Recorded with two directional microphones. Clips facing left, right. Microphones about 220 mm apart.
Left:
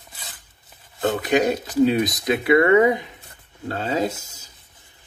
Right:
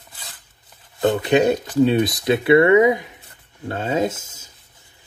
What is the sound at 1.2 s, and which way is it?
Speech, 30° right (ahead or behind).